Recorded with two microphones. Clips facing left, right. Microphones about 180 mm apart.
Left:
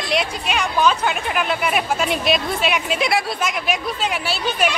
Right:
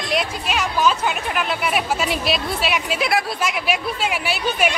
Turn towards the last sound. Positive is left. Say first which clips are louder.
# even
turn(degrees=-10)  # may be behind; listen again after turning